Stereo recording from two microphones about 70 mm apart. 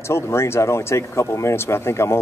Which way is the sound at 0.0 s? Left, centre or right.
Left.